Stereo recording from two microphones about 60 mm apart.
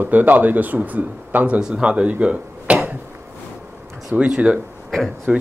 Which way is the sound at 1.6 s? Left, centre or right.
Centre.